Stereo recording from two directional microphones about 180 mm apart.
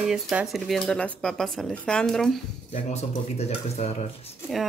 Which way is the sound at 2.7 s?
40° left (ahead or behind).